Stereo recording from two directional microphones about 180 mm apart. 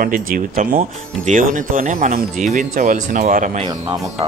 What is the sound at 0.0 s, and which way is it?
Speech, 50° right (ahead or behind).